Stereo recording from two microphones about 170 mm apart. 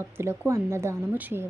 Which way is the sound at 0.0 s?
15° right (ahead or behind).